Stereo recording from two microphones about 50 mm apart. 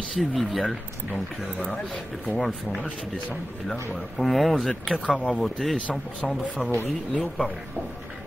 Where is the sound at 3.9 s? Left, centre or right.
Centre.